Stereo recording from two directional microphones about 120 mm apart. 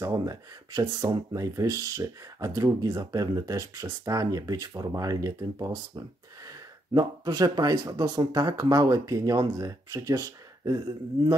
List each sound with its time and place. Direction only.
0.0 s speech: 30° right (ahead or behind)